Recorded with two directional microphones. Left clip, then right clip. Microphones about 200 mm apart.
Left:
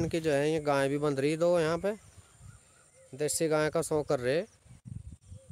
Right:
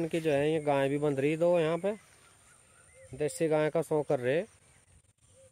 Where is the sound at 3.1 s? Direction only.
Centre (ahead or behind).